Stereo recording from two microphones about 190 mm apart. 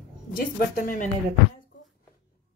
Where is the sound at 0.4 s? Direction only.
50° left (ahead or behind).